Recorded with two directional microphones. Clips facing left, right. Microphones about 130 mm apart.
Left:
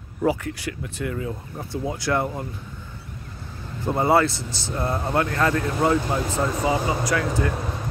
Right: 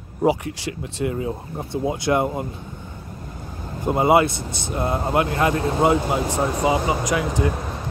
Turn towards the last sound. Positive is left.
turn(degrees=-20)  # may be behind; listen again after turning